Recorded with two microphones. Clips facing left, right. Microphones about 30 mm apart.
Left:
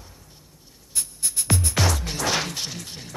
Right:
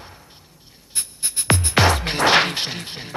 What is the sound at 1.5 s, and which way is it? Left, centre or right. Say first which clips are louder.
Music: right 7 dB; right.